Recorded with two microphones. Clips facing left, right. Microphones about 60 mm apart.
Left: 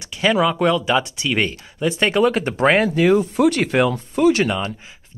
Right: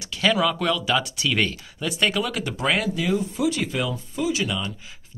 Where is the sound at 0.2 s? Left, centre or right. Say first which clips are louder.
Left 5 dB; left.